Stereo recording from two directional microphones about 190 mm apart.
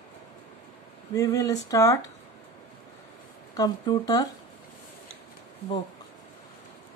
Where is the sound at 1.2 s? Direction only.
15° left (ahead or behind).